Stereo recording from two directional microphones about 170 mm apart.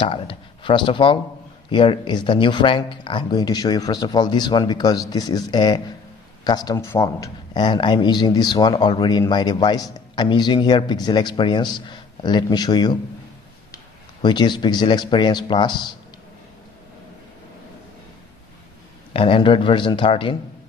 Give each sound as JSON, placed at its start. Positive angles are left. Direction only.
{"t": 0.0, "sound": "a man's voice", "side_deg": 30}
{"t": 14.2, "sound": "a man's voice", "side_deg": 25}
{"t": 19.1, "sound": "a man's voice", "side_deg": 30}